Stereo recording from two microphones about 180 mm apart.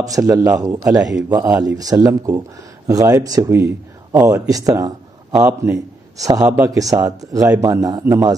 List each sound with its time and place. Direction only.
0.0 s a man's voice: 20° right (ahead or behind)